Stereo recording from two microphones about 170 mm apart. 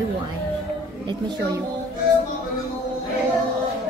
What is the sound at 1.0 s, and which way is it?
Speech, 25° right (ahead or behind).